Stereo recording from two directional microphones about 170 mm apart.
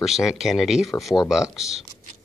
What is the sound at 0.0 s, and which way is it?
Speech, centre (ahead or behind).